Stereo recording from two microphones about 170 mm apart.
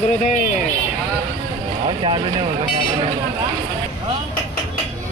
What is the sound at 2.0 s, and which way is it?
Speech, 30° right (ahead or behind).